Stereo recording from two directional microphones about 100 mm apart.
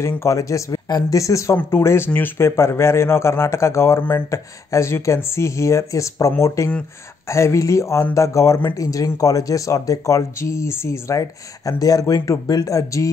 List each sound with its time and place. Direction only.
0.1 s speech: 30° left (ahead or behind)